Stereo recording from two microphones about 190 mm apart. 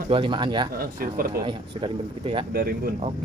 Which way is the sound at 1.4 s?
25° right (ahead or behind).